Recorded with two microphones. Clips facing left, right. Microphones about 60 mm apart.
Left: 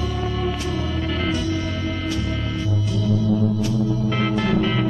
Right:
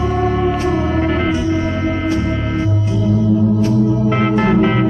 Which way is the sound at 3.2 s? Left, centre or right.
Right.